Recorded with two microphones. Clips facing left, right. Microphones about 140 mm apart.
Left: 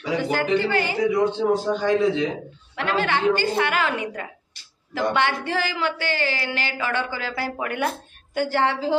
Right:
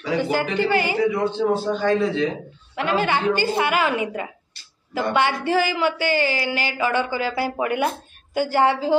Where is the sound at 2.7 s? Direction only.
5° right (ahead or behind).